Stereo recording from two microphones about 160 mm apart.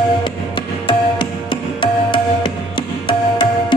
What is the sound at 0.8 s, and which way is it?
Music, 30° left (ahead or behind).